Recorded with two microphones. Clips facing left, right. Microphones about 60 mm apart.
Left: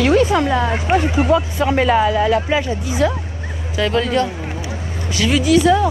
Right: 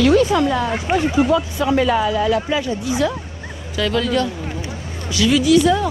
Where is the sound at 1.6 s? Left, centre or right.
Left.